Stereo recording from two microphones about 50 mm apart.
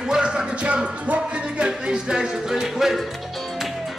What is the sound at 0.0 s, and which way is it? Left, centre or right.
Music, centre.